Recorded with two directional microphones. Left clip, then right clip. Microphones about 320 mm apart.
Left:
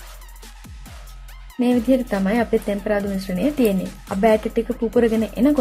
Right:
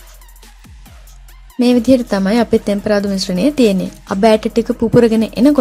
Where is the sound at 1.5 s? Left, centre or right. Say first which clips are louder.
Right 7 dB; centre.